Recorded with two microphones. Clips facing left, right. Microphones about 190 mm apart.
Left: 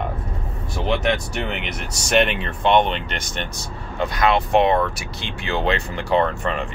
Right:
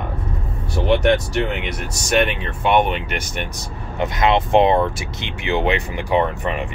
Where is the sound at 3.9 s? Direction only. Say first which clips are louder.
Right 1 dB; 20° right (ahead or behind).